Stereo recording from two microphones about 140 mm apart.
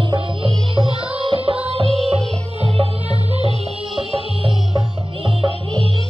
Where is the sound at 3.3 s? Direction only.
45° right (ahead or behind).